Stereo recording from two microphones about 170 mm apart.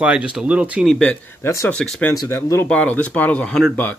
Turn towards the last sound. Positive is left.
turn(degrees=5)  # may be behind; listen again after turning